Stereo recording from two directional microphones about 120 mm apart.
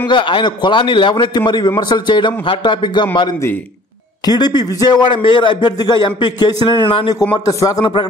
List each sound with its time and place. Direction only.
0.1 s speech: 40° left (ahead or behind)
4.3 s speech: 35° left (ahead or behind)